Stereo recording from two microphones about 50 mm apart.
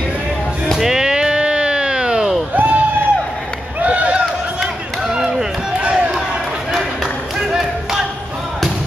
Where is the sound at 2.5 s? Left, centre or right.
Right.